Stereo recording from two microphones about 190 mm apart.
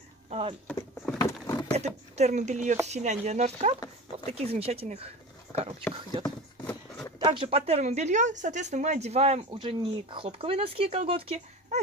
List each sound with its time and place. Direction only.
0.3 s speech: 30° right (ahead or behind)
1.1 s vehicle: 20° left (ahead or behind)
1.7 s speech: 35° right (ahead or behind)
6.6 s a sound: 10° left (ahead or behind)
7.2 s speech: 25° right (ahead or behind)